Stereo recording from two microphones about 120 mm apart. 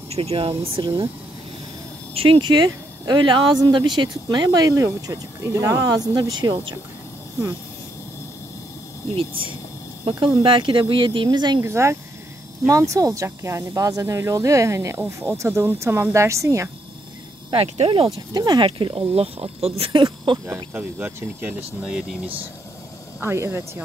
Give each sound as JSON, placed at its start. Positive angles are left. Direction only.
{"t": 0.1, "sound": "speech", "side_deg": -55}
{"t": 2.1, "sound": "speech", "side_deg": -50}
{"t": 10.4, "sound": "speech", "side_deg": -45}
{"t": 11.6, "sound": "speech", "side_deg": -20}
{"t": 17.7, "sound": "speech", "side_deg": -50}
{"t": 18.3, "sound": "speech", "side_deg": -35}
{"t": 18.7, "sound": "speech", "side_deg": -45}
{"t": 20.4, "sound": "speech", "side_deg": -20}
{"t": 23.2, "sound": "speech", "side_deg": -20}